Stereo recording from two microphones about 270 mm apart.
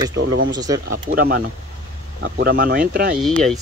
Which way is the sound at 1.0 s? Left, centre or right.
Right.